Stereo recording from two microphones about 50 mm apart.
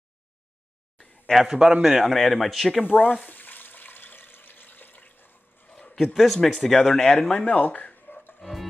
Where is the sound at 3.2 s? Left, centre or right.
Left.